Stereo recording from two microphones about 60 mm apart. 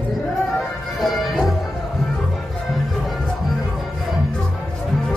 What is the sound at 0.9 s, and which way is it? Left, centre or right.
Music, centre.